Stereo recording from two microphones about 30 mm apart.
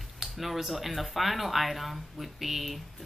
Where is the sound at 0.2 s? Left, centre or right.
Centre.